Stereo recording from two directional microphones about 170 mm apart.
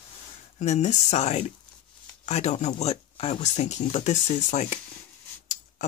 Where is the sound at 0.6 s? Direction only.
40° left (ahead or behind).